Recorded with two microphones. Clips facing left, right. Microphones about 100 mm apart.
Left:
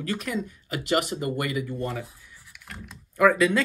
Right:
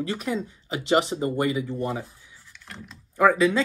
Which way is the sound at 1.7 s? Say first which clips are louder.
Right 2 dB; 15° right (ahead or behind).